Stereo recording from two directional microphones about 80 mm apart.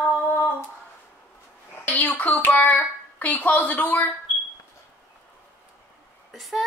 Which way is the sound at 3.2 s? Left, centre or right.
Centre.